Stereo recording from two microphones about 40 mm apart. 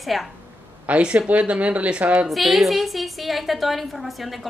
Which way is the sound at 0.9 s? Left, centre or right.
Right.